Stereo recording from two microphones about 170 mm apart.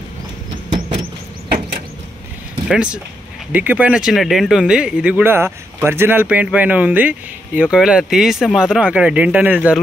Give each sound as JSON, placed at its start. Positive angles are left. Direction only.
{"t": 0.7, "sound": "vehicle", "side_deg": -40}
{"t": 2.7, "sound": "speech", "side_deg": -5}